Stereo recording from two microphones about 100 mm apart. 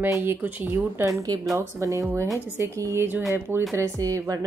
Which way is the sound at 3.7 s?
30° right (ahead or behind).